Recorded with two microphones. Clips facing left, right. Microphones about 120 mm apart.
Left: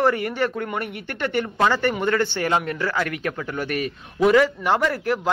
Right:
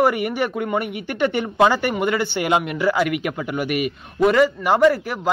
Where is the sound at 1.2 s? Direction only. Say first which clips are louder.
Right 4 dB; 20° right (ahead or behind).